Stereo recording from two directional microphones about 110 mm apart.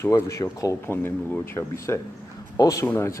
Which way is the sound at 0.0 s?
30° left (ahead or behind).